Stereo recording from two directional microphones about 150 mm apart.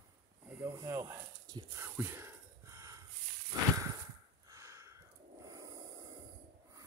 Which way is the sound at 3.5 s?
25° right (ahead or behind).